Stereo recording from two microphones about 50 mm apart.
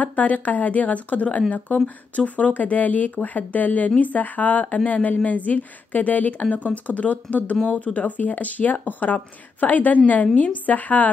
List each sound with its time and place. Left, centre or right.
0.0 s speech: left